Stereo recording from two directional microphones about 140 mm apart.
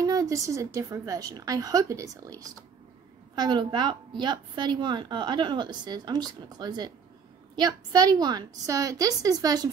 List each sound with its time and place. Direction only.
0.0 s a woman's voice: 25° right (ahead or behind)